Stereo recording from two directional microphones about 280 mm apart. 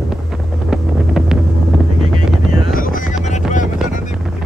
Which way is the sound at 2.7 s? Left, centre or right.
Left.